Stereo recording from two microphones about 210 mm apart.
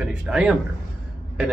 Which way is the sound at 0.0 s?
5° right (ahead or behind).